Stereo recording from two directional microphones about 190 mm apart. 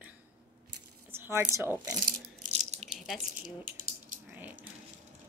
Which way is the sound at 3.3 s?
40° right (ahead or behind).